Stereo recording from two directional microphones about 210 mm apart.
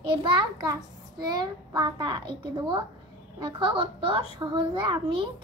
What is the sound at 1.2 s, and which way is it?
A child's voice, 20° right (ahead or behind).